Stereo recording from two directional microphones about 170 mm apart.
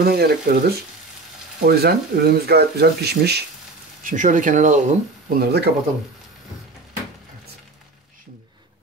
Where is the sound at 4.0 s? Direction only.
50° right (ahead or behind).